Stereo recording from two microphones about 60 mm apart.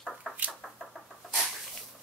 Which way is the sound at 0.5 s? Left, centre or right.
Centre.